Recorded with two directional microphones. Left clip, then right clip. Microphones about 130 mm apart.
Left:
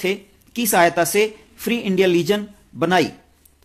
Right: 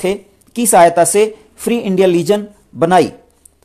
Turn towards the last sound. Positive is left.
turn(degrees=-35)  # may be behind; listen again after turning